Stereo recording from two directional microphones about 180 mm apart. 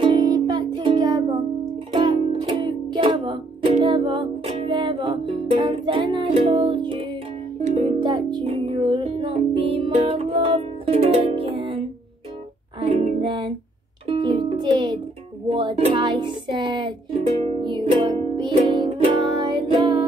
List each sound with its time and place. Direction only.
0.0 s music: 25° right (ahead or behind)
12.8 s music: 30° right (ahead or behind)